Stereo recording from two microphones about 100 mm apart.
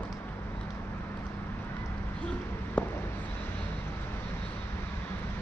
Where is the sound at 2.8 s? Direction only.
20° left (ahead or behind).